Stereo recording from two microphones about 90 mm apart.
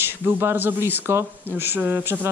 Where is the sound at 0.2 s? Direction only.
25° right (ahead or behind).